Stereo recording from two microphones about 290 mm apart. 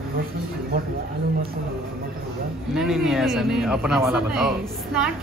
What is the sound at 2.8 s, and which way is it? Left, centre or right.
A man's voice, centre.